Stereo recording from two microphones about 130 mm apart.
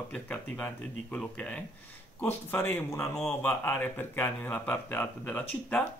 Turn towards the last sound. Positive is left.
turn(degrees=10)  # may be behind; listen again after turning